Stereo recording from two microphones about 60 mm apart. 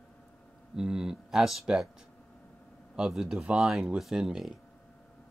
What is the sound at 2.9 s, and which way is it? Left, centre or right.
Speech, centre.